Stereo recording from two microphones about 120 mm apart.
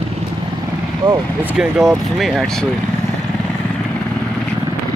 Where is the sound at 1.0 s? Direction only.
35° right (ahead or behind).